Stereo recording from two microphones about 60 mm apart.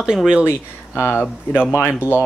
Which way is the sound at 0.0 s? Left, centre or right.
Centre.